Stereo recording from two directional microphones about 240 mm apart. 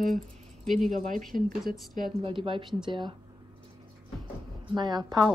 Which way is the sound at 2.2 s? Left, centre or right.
Right.